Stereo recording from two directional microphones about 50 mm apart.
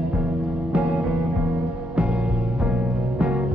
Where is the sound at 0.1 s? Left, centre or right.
Right.